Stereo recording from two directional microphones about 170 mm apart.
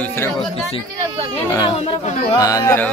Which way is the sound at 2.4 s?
20° left (ahead or behind).